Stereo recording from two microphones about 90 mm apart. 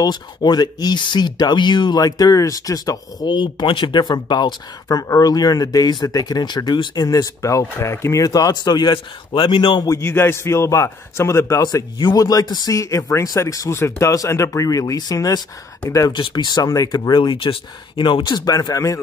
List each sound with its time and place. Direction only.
0.0 s speech: 50° left (ahead or behind)
4.8 s speech: 35° left (ahead or behind); by 9.8 s 60° left (ahead or behind)
9.8 s speech: 30° left (ahead or behind)
16.1 s speech: 65° left (ahead or behind); by 18.9 s 40° left (ahead or behind)